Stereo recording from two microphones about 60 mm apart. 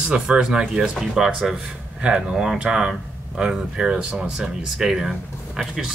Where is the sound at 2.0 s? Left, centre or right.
Centre.